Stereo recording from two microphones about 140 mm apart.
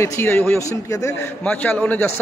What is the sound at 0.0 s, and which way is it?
A man's voice, 20° left (ahead or behind).